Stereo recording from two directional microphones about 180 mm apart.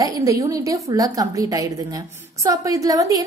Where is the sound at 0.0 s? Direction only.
15° right (ahead or behind).